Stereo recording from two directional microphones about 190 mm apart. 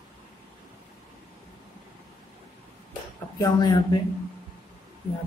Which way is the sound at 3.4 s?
20° left (ahead or behind).